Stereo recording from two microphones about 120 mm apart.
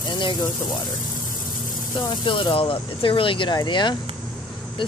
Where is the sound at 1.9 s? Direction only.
40° left (ahead or behind).